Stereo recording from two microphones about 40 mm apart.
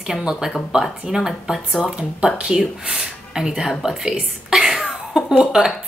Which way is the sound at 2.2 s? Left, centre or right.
Right.